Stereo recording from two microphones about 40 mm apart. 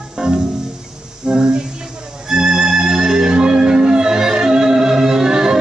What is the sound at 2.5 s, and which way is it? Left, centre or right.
Music, centre.